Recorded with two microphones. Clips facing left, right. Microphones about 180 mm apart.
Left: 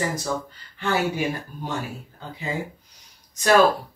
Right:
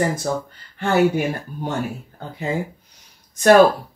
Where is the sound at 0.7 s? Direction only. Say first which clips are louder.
Right 5 dB; 50° right (ahead or behind).